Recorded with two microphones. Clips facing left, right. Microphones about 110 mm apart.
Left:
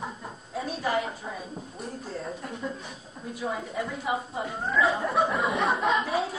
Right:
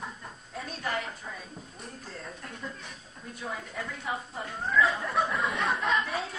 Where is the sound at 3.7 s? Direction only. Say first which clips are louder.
Left 6 dB; 10° left (ahead or behind).